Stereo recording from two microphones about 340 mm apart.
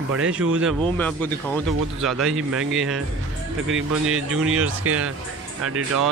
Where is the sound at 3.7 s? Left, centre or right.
Right.